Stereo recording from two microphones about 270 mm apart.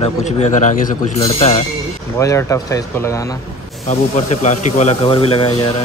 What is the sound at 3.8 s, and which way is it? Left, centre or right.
Speech, left.